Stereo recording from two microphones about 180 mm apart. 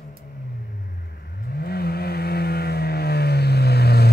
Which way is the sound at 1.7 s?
60° left (ahead or behind).